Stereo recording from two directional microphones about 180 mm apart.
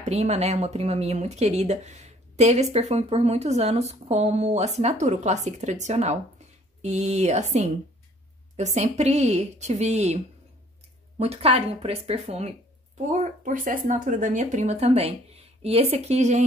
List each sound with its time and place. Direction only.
0.0 s speech: 40° right (ahead or behind)